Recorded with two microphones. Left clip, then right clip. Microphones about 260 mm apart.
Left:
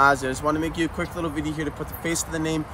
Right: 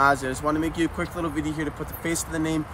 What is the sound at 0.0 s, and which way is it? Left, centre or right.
Speech, centre.